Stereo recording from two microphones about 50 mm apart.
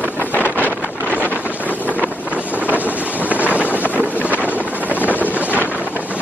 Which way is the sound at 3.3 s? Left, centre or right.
Right.